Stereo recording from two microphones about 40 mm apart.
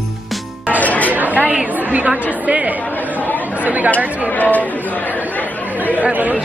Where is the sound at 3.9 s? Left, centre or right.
Left.